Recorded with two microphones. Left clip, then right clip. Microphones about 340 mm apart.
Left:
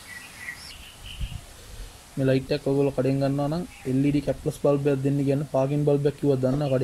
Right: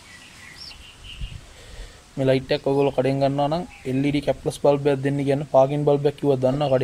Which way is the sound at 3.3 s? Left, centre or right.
Right.